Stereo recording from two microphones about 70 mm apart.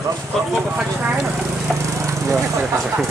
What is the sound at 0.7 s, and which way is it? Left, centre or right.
Speech, right.